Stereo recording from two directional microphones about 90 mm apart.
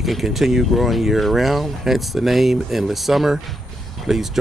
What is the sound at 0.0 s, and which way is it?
Speech, centre (ahead or behind).